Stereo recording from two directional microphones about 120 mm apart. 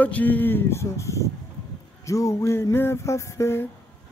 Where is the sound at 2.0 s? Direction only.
25° left (ahead or behind).